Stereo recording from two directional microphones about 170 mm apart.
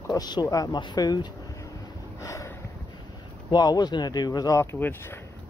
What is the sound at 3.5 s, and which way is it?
Speech, 25° left (ahead or behind).